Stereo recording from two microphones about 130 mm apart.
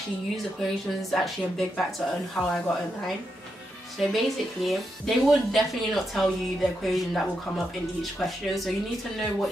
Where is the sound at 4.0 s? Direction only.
Centre (ahead or behind).